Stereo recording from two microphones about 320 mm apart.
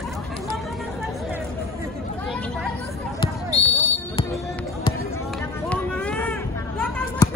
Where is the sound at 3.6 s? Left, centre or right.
Centre.